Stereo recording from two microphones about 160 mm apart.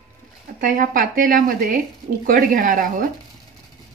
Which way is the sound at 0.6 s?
60° right (ahead or behind).